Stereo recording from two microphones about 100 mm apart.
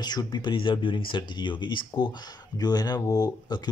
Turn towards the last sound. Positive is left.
turn(degrees=40)  # may be behind; listen again after turning